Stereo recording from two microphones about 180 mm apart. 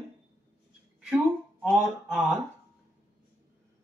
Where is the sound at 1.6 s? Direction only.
5° right (ahead or behind).